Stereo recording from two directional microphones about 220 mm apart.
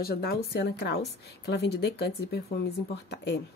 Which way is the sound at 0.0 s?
45° left (ahead or behind).